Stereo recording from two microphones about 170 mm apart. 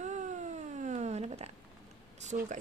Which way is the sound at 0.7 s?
45° right (ahead or behind).